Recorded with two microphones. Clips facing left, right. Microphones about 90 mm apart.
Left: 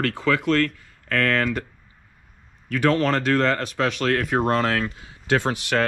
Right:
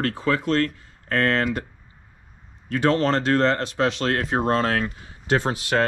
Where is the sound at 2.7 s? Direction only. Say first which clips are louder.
Even; 25° right (ahead or behind).